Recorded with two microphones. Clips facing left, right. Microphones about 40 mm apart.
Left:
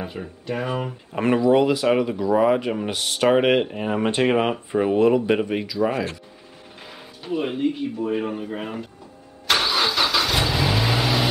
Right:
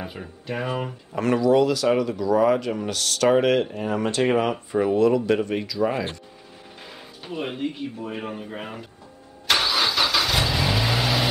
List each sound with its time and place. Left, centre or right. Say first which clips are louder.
0.0 s speech: left 3 dB; centre
1.1 s speech: left 1 dB; left; by 8.8 s centre
9.5 s vehicle: left 1 dB; centre